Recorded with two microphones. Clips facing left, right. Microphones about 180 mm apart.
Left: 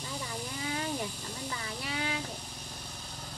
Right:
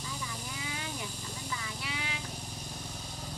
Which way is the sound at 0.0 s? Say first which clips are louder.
Left 3 dB; 40° left (ahead or behind).